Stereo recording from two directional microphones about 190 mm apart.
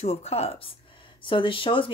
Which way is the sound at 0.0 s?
35° left (ahead or behind).